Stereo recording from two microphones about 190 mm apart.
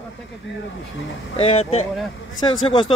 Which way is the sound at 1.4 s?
30° left (ahead or behind).